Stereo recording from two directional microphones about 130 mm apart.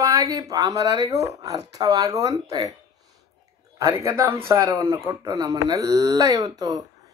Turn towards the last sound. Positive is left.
turn(degrees=-30)  # may be behind; listen again after turning